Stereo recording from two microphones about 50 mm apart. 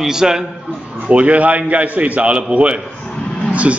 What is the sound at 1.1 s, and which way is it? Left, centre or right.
A man's voice, right.